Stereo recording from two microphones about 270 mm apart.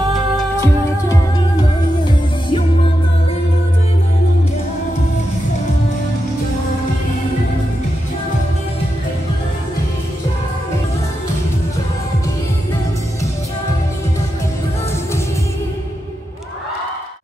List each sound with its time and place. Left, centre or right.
0.6 s music: centre